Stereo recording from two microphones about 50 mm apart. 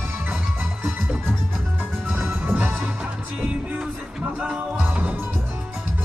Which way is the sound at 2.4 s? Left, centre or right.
Right.